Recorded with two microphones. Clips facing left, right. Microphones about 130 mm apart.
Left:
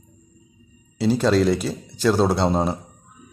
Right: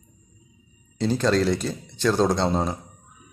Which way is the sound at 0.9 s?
5° left (ahead or behind).